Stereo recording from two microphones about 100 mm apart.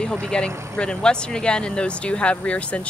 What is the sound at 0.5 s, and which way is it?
Speech, 25° right (ahead or behind).